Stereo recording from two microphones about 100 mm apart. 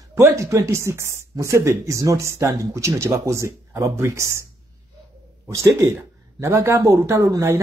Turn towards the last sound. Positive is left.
turn(degrees=-30)  # may be behind; listen again after turning